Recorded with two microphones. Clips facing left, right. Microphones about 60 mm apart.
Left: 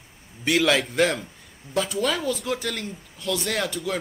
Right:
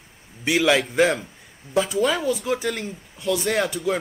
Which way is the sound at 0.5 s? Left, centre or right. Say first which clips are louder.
Right 2 dB; centre.